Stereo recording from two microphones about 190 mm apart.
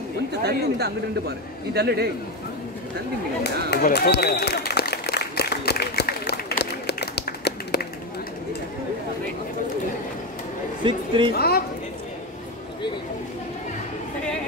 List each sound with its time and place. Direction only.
0.4 s speech: 60° right (ahead or behind)
3.7 s a sound: 55° left (ahead or behind)
10.8 s speech: 25° right (ahead or behind)
11.3 s a woman's voice: 55° left (ahead or behind)